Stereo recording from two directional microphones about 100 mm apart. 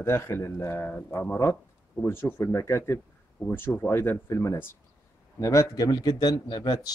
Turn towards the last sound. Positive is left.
turn(degrees=45)  # may be behind; listen again after turning